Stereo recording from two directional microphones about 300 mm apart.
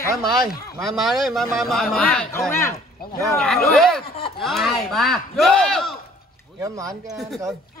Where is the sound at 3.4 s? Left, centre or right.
Centre.